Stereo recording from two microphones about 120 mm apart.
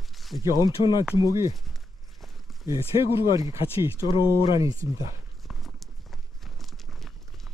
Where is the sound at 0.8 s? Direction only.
45° left (ahead or behind).